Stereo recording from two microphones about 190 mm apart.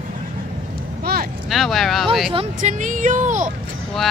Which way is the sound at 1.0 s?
55° right (ahead or behind).